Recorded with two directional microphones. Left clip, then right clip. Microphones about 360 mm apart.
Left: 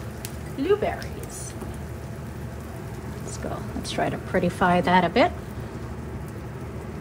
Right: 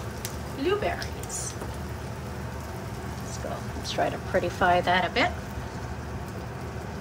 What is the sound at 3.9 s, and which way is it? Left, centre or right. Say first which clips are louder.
A woman's voice: left 1 dB; centre.